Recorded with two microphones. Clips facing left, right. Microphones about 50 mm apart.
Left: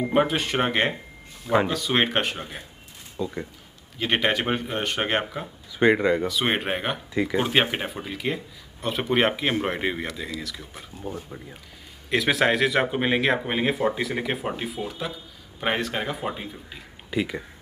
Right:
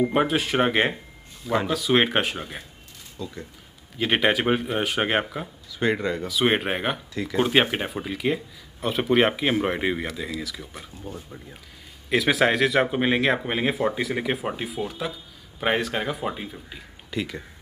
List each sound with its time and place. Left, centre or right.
0.0 s speech: centre
3.2 s speech: left
4.0 s speech: centre
5.8 s speech: centre
6.2 s speech: centre
7.2 s speech: centre
7.4 s speech: centre
12.1 s speech: centre